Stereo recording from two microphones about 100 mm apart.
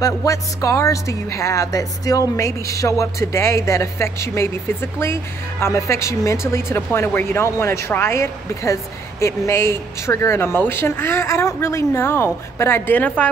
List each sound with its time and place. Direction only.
0.0 s speech: 35° left (ahead or behind); by 13.3 s 15° left (ahead or behind)